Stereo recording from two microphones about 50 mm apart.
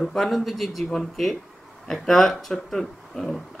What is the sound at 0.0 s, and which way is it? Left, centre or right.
Speech, centre.